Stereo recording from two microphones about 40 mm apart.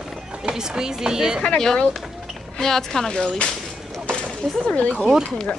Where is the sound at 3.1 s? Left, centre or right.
Left.